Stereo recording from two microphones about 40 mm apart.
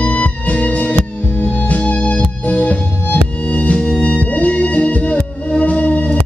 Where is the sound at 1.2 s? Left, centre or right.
Left.